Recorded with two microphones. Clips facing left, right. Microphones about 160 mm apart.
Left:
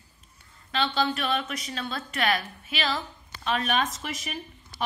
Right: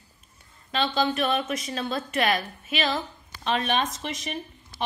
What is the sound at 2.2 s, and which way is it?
A woman's voice, 20° right (ahead or behind).